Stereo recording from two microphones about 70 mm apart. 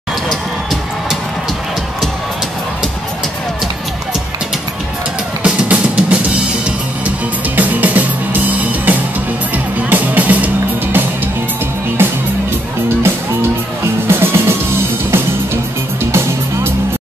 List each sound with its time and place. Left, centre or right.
5.4 s drum kit: centre
7.5 s music: right
14.0 s music: right